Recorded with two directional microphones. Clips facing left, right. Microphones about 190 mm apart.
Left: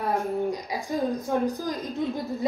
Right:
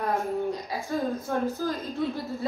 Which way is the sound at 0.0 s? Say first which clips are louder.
Left 1 dB; 15° left (ahead or behind).